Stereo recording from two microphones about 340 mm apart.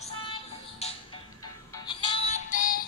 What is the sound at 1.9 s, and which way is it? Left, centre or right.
Music, centre.